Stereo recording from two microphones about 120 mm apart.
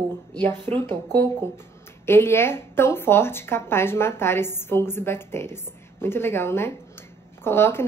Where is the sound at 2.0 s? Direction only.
20° left (ahead or behind).